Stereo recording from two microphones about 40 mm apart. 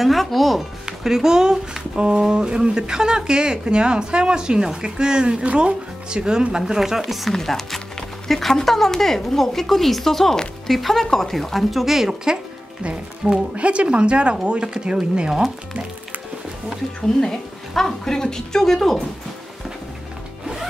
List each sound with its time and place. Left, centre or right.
0.0 s speech: centre
1.0 s speech: centre
5.4 s speech: right
6.0 s speech: right
13.2 s speech: right
17.2 s speech: centre